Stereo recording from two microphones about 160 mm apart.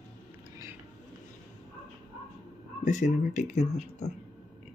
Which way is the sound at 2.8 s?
50° left (ahead or behind).